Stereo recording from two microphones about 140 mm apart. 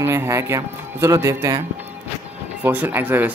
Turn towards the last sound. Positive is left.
turn(degrees=-15)  # may be behind; listen again after turning